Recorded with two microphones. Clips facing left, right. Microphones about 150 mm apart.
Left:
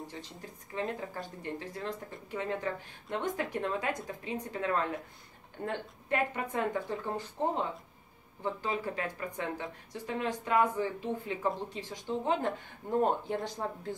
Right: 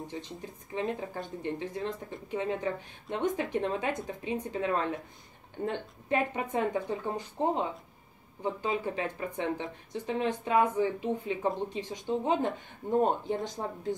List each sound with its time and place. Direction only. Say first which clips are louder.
0.0 s speech: right 4 dB; 20° right (ahead or behind)